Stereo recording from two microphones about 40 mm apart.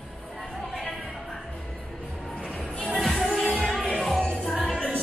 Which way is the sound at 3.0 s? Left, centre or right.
Centre.